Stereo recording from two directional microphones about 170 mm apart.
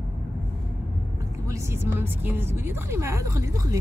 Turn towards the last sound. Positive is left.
turn(degrees=-20)  # may be behind; listen again after turning